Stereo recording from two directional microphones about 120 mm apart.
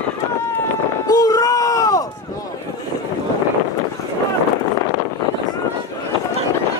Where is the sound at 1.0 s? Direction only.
30° left (ahead or behind).